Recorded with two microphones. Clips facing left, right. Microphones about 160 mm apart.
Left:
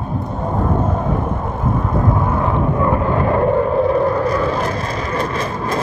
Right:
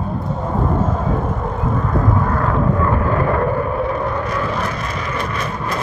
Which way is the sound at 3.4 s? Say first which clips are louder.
Left 4 dB; 30° left (ahead or behind).